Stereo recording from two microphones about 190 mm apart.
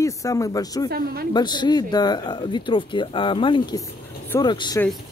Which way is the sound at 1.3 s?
20° left (ahead or behind).